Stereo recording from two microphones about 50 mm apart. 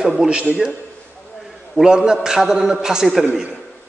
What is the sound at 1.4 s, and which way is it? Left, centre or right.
A man's voice, centre.